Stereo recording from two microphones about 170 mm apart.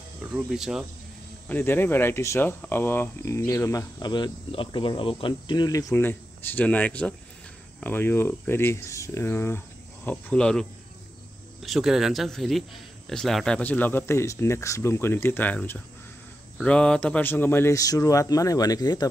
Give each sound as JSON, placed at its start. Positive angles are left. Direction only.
{"t": 0.5, "sound": "cricket", "side_deg": 0}
{"t": 1.5, "sound": "speech", "side_deg": 10}
{"t": 10.0, "sound": "cricket", "side_deg": 5}
{"t": 11.6, "sound": "speech", "side_deg": 0}